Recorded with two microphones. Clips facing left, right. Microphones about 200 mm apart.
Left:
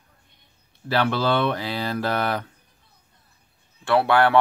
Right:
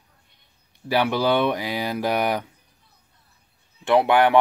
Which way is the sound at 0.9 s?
15° right (ahead or behind).